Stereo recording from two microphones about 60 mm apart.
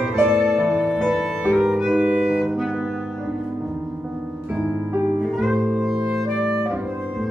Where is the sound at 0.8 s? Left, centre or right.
Centre.